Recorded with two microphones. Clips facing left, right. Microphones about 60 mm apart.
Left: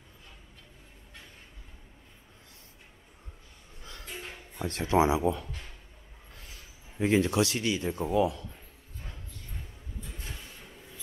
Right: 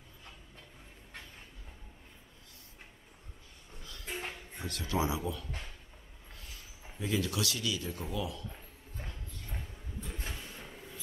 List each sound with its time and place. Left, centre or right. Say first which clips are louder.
4.6 s speech: left 9 dB; left
7.0 s speech: left 9 dB; left